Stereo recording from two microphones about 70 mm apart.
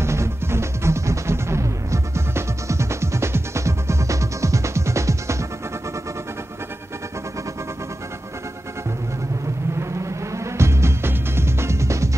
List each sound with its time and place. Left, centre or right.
0.0 s music: right
9.8 s music: right